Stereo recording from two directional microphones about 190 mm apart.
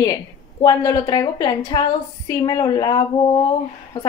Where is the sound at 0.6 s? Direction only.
20° left (ahead or behind).